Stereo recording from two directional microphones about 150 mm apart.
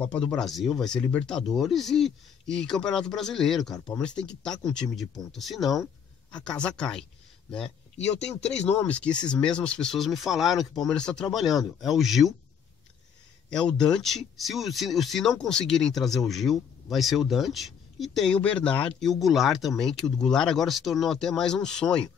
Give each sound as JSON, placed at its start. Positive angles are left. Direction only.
{"t": 0.3, "sound": "speech", "side_deg": 0}
{"t": 8.2, "sound": "speech", "side_deg": 45}
{"t": 8.6, "sound": "speech", "side_deg": 10}
{"t": 13.5, "sound": "speech", "side_deg": 5}